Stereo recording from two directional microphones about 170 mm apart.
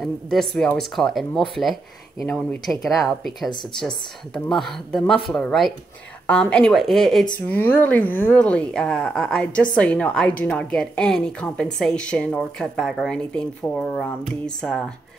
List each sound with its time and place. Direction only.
0.0 s a woman's voice: centre (ahead or behind)